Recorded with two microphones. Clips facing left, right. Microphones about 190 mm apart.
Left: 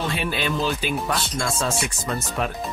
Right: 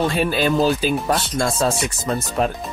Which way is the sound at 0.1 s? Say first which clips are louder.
Right 7 dB; 40° right (ahead or behind).